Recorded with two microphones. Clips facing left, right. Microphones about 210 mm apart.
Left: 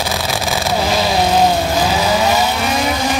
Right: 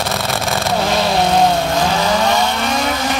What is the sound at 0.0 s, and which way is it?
Vehicle, centre (ahead or behind).